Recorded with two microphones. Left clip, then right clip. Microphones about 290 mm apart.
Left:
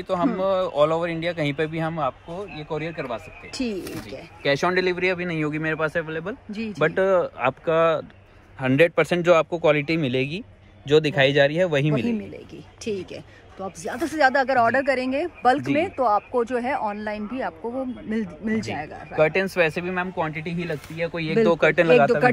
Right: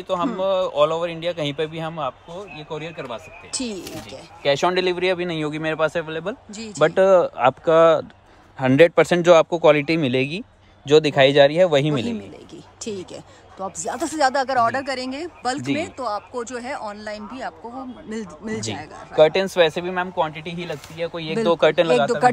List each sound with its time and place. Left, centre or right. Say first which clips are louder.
0.1 s speech: right 1 dB; centre
4.1 s speech: right 3 dB; right
12.9 s speech: left 1 dB; centre
19.1 s speech: right 5 dB; right; by 22.3 s centre